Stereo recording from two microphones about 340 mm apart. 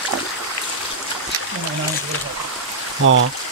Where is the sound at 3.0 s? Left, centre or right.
Right.